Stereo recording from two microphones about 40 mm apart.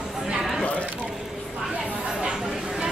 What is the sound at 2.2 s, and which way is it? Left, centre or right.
Speech, centre.